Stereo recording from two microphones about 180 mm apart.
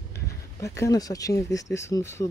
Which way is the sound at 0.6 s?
20° left (ahead or behind).